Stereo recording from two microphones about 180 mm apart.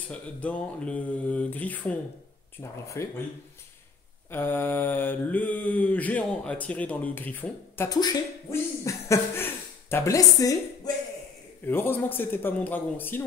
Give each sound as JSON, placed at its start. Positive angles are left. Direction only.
{"t": 0.1, "sound": "mantra", "side_deg": 5}
{"t": 3.0, "sound": "mantra", "side_deg": 15}
{"t": 4.3, "sound": "mantra", "side_deg": 10}